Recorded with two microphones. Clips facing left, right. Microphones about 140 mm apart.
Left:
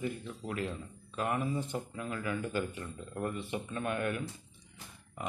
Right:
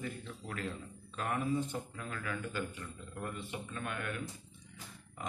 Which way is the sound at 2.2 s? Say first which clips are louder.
Left 4 dB; 25° left (ahead or behind).